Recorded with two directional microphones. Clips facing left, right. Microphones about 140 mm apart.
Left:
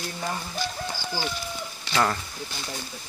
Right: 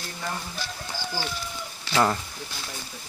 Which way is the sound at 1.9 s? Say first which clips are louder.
Right 2 dB; 15° right (ahead or behind).